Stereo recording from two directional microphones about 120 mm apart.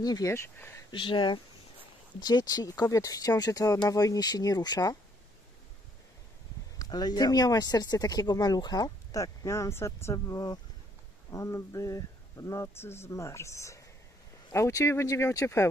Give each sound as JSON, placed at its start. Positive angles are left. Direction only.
{"t": 0.0, "sound": "speech", "side_deg": 30}
{"t": 0.9, "sound": "speech", "side_deg": 45}
{"t": 6.8, "sound": "speech", "side_deg": 35}